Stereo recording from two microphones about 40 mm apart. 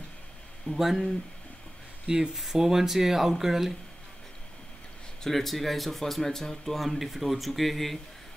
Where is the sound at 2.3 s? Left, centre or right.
Centre.